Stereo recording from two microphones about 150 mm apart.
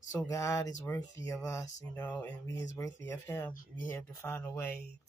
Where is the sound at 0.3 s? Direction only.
20° left (ahead or behind).